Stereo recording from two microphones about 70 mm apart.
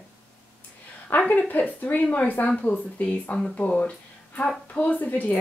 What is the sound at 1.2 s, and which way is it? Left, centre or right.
Speech, left.